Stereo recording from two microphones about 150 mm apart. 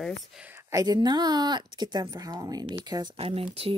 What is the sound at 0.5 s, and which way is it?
Speech, 20° right (ahead or behind).